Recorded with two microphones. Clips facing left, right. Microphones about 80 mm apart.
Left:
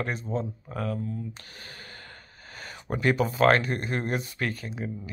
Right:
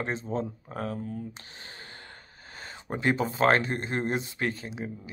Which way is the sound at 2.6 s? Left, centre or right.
Right.